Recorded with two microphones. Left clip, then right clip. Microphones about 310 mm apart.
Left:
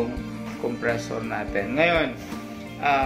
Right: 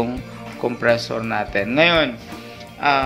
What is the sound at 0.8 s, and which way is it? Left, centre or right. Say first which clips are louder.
Speech: right 9 dB; right.